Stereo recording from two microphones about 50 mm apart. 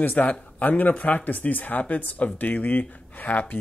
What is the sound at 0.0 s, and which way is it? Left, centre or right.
Speech, left.